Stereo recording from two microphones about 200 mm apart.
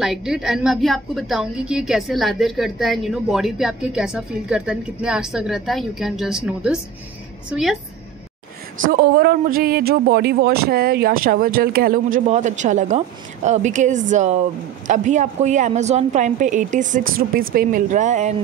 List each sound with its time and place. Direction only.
0.0 s a woman's voice: centre (ahead or behind)
8.8 s a woman's voice: 50° right (ahead or behind)